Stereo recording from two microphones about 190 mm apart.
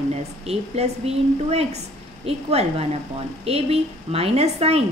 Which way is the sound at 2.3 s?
30° right (ahead or behind).